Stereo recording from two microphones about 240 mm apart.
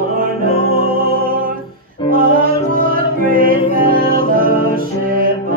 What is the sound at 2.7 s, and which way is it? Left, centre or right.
Music, right.